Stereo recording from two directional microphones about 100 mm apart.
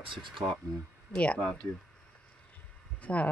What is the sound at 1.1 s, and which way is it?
Speech, 10° left (ahead or behind).